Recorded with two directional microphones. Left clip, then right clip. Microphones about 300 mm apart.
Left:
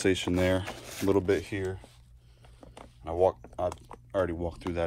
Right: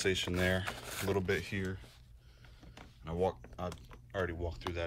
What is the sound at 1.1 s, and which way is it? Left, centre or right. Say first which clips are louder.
Speech: left 8 dB; centre.